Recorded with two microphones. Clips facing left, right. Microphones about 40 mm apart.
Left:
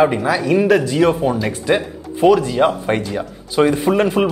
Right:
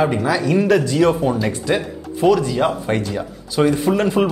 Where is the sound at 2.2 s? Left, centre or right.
Centre.